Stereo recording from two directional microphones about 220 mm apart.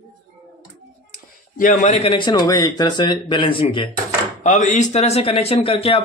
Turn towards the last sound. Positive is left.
turn(degrees=25)  # may be behind; listen again after turning